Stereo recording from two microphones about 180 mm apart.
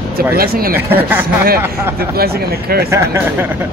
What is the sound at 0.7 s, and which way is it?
Speech, 10° right (ahead or behind).